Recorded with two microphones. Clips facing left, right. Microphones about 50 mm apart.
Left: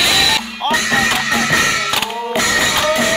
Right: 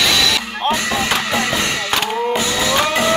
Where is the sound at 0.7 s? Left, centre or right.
Left.